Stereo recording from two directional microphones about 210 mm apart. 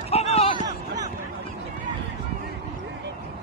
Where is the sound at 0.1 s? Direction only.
30° left (ahead or behind).